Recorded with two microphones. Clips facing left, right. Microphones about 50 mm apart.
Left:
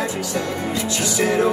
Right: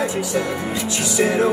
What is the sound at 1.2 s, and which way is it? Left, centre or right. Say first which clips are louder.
Music: right 1 dB; centre.